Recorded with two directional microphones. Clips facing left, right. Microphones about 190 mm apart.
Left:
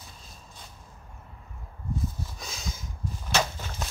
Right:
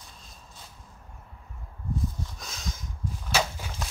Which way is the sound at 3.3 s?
10° right (ahead or behind).